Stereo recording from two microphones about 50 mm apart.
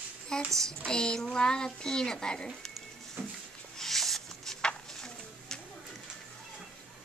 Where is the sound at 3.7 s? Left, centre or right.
Centre.